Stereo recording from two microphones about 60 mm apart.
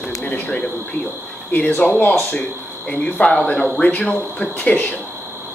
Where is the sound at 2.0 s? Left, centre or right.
Left.